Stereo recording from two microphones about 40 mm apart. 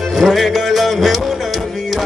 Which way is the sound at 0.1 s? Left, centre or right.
Centre.